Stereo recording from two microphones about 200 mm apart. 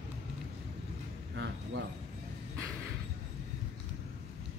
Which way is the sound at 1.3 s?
65° right (ahead or behind).